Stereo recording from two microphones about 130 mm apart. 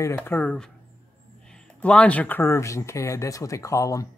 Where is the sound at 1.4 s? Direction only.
5° left (ahead or behind); by 4.0 s 25° left (ahead or behind).